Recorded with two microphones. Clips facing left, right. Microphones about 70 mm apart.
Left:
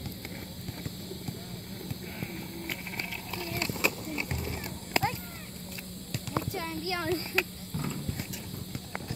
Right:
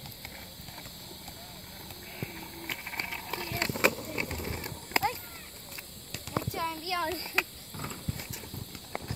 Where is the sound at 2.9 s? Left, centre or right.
Right.